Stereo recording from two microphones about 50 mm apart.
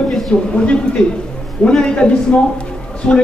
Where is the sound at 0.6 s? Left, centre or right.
Left.